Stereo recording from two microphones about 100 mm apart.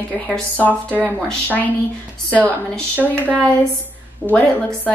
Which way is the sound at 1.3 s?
15° left (ahead or behind).